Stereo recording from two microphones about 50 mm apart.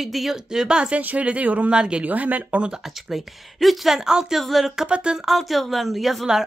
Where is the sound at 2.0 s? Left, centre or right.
Right.